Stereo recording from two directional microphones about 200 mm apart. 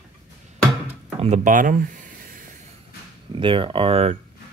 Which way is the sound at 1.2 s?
40° right (ahead or behind).